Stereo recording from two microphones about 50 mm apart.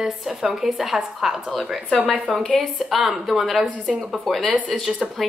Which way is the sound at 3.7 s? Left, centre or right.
Right.